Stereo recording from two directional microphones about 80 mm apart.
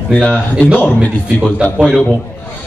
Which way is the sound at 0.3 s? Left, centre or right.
Centre.